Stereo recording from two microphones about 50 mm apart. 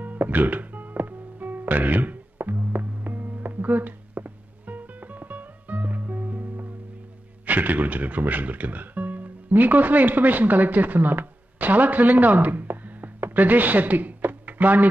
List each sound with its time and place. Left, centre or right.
0.0 s music: right
7.4 s speech: right